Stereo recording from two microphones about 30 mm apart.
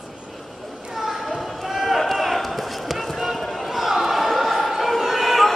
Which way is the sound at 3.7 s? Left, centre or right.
Centre.